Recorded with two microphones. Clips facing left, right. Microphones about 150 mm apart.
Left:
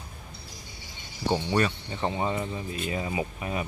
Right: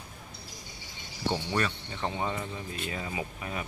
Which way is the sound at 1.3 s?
20° left (ahead or behind).